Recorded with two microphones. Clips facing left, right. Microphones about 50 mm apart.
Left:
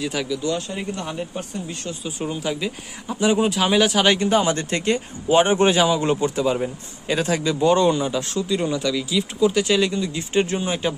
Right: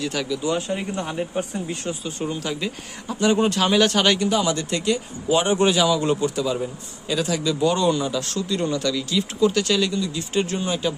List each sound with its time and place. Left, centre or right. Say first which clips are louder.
0.0 s speech: left 1 dB; centre
0.4 s speech: right 1 dB; centre
2.0 s speech: left 3 dB; centre
4.1 s speech: left 2 dB; left